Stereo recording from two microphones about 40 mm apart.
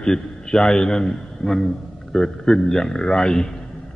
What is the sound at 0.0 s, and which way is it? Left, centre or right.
A man's voice, centre.